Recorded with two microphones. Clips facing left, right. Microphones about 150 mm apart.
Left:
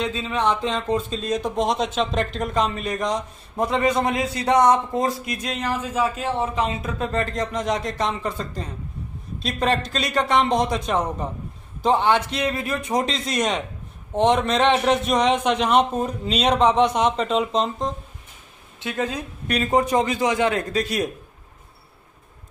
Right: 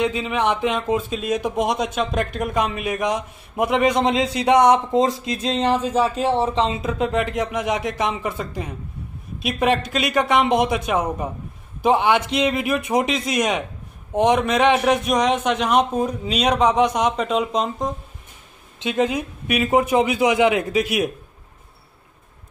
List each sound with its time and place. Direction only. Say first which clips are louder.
0.0 s speech: right 2 dB; 15° right (ahead or behind)
18.8 s speech: right 5 dB; 20° right (ahead or behind)